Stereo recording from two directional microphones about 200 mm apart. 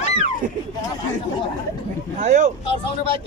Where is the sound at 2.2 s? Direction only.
35° right (ahead or behind).